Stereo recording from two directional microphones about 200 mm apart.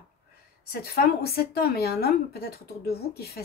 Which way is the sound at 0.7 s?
50° left (ahead or behind).